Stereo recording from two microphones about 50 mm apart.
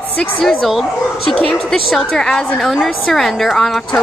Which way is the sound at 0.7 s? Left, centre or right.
Centre.